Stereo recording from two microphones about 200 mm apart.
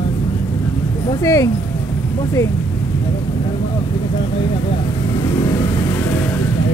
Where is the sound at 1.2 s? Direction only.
15° left (ahead or behind).